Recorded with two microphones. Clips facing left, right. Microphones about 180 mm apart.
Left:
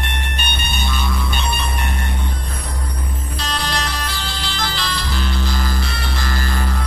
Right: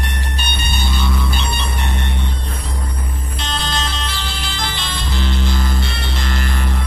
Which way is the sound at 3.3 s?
25° right (ahead or behind).